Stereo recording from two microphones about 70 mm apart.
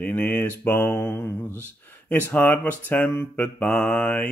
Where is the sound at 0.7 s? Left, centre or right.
Left.